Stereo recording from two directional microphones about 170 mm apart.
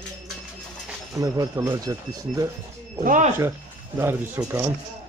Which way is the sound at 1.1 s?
20° right (ahead or behind).